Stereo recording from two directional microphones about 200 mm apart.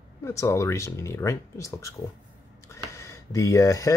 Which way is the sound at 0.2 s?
15° left (ahead or behind).